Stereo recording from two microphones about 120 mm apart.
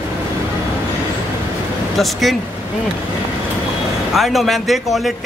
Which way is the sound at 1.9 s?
Centre (ahead or behind).